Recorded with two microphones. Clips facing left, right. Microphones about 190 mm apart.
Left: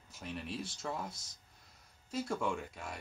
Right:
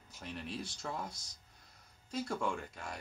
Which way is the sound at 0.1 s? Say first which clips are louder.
Left 1 dB; centre (ahead or behind).